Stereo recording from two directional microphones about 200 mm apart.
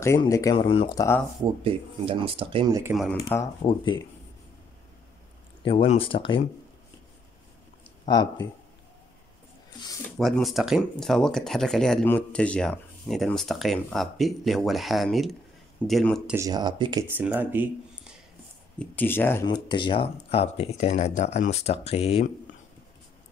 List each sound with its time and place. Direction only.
0.2 s speech: 15° left (ahead or behind)
1.4 s speech: 25° right (ahead or behind)
2.9 s speech: centre (ahead or behind)
3.6 s speech: 25° left (ahead or behind)
5.6 s speech: 25° left (ahead or behind)
8.1 s speech: 20° left (ahead or behind)
10.1 s speech: centre (ahead or behind)
16.3 s speech: 20° right (ahead or behind)
17.2 s speech: 10° right (ahead or behind)
18.8 s speech: 10° left (ahead or behind)
19.4 s speech: 20° left (ahead or behind)